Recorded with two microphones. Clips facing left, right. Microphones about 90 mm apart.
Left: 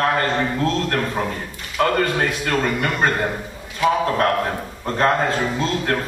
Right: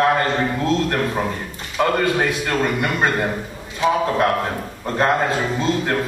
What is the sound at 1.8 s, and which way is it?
A man's voice, 10° right (ahead or behind).